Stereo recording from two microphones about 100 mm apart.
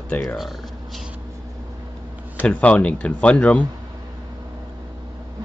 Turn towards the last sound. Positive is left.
turn(degrees=15)  # may be behind; listen again after turning